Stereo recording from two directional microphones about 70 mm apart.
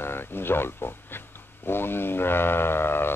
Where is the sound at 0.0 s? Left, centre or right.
Left.